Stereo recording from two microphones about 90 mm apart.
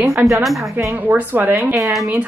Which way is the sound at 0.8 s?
25° right (ahead or behind).